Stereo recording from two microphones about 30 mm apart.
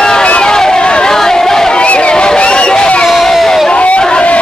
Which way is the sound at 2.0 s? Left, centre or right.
Left.